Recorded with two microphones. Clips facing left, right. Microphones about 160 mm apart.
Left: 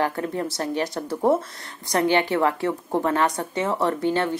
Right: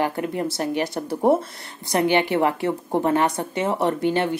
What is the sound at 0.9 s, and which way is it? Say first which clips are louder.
A woman's voice: right 2 dB; 25° right (ahead or behind).